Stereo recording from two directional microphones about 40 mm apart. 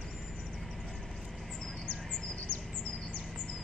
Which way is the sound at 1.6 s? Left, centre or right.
Centre.